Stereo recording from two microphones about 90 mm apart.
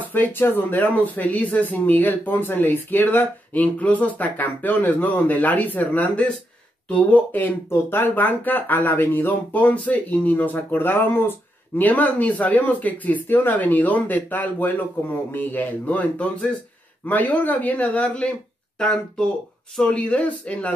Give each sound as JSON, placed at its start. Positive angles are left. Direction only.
{"t": 0.1, "sound": "speech", "side_deg": 20}